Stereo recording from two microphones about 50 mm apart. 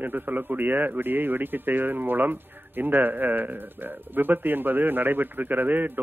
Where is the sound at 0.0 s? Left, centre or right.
Right.